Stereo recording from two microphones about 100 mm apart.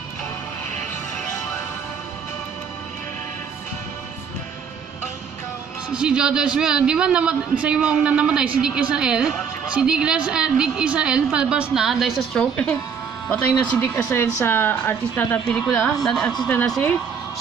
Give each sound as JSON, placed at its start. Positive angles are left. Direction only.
{"t": 5.9, "sound": "a woman's voice", "side_deg": -10}
{"t": 12.4, "sound": "speech", "side_deg": 15}
{"t": 15.4, "sound": "a man's voice", "side_deg": 5}